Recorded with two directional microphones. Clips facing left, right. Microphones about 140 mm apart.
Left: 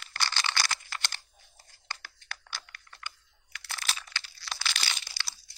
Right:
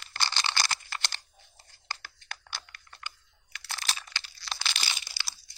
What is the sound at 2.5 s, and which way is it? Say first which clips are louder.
Computer keyboard: right 1 dB; 25° right (ahead or behind).